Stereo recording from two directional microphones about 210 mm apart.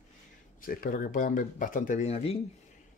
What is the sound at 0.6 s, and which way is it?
Speech, 40° left (ahead or behind).